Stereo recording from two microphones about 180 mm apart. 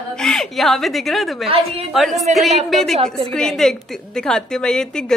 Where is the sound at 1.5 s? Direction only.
30° right (ahead or behind).